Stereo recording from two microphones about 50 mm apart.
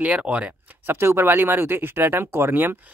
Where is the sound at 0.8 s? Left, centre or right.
Right.